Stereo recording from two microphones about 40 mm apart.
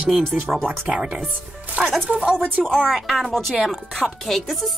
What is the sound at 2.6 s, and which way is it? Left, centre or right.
Speech, centre.